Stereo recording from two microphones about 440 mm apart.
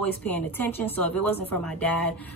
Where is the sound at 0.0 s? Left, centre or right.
Centre.